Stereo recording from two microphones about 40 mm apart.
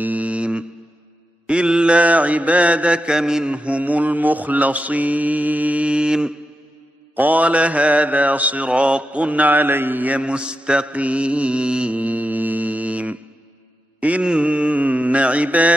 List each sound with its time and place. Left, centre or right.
0.0 s music: right
1.5 s mantra: right
3.2 s mantra: centre
3.4 s mantra: right
7.2 s mantra: right
10.1 s mantra: right